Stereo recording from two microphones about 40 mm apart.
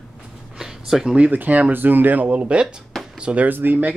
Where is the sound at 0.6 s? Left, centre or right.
Centre.